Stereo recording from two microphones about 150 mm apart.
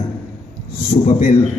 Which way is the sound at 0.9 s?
65° left (ahead or behind).